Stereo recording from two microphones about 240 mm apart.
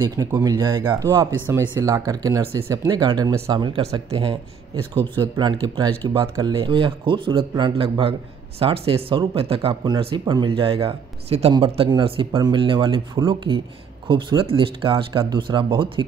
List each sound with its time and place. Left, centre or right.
0.0 s speech: centre